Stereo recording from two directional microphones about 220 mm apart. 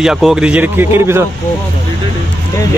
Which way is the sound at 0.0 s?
Centre (ahead or behind).